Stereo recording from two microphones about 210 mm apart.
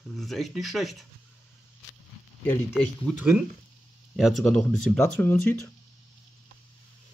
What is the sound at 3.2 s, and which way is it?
Speech, 5° right (ahead or behind).